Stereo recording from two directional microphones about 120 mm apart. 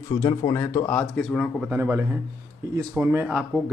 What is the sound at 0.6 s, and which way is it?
Speech, 25° left (ahead or behind).